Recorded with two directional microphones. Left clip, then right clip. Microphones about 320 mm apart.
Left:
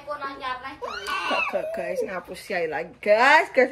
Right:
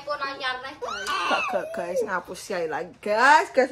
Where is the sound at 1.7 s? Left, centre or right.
Centre.